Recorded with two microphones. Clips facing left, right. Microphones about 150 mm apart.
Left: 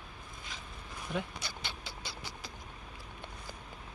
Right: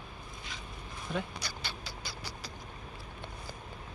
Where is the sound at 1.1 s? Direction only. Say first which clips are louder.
Right 1 dB; 20° left (ahead or behind).